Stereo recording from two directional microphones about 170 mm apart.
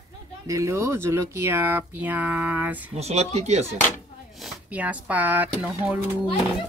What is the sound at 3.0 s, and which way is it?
Speech, 40° right (ahead or behind).